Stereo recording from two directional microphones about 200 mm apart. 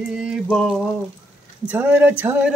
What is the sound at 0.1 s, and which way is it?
Mantra, 5° right (ahead or behind).